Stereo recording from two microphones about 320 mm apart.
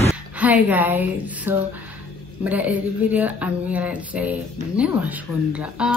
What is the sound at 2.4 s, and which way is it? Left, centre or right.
Speech, centre.